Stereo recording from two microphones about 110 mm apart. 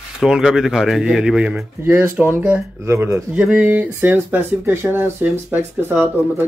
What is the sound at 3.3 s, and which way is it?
Speech, 10° right (ahead or behind).